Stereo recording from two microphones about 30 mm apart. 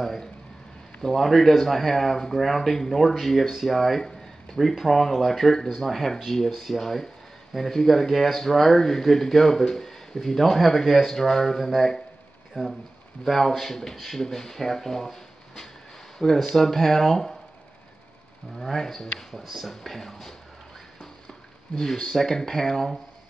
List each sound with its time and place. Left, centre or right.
1.0 s speech: centre
4.0 s a sound: left
4.6 s speech: centre
16.2 s speech: centre
18.6 s speech: centre
21.7 s speech: centre